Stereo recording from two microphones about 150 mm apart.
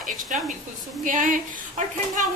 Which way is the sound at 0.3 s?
60° right (ahead or behind).